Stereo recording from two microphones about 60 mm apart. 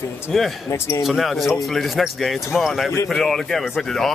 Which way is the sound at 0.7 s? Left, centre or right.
Left.